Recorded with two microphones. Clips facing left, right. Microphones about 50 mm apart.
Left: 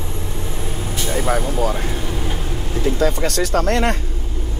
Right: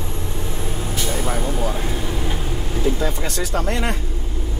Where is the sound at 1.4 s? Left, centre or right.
Centre.